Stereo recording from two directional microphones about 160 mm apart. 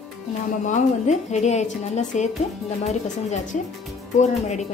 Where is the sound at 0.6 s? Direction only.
50° left (ahead or behind).